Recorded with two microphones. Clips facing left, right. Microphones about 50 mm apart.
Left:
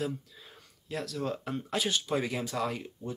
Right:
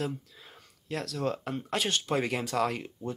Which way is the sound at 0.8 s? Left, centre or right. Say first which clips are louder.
Right 2 dB; right.